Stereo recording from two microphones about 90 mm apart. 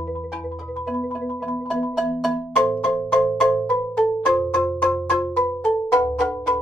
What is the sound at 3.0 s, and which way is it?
Cowbell, 15° left (ahead or behind).